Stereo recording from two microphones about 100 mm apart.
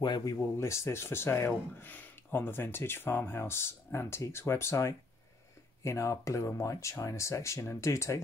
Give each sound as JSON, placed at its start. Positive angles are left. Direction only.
{"t": 0.0, "sound": "speech", "side_deg": 45}
{"t": 0.4, "sound": "speech", "side_deg": 30}